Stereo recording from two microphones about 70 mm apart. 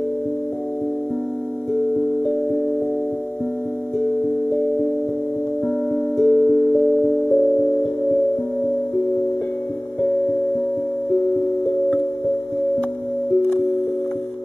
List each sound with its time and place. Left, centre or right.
1.7 s music: centre
4.1 s music: centre
6.1 s music: centre